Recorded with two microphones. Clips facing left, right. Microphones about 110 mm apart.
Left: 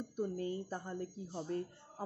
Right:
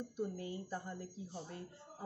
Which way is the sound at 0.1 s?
45° left (ahead or behind).